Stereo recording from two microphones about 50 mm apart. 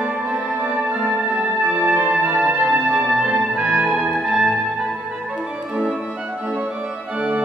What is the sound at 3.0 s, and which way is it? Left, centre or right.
Music, centre.